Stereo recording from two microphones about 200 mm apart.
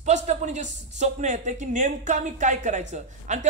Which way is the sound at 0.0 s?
35° right (ahead or behind).